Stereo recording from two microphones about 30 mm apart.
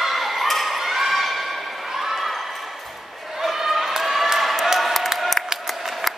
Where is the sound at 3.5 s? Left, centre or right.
Centre.